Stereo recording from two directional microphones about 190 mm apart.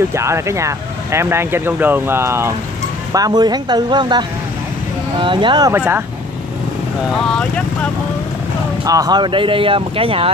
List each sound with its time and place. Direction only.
0.1 s speech: 15° right (ahead or behind)
5.8 s speech: 10° right (ahead or behind)
7.2 s speech: 5° left (ahead or behind)
8.8 s speech: 20° right (ahead or behind)